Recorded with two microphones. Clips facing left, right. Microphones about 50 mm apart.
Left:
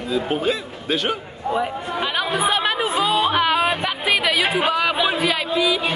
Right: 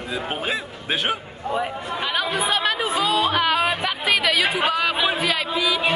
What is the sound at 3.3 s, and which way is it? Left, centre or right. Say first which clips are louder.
Music: left 2 dB; centre.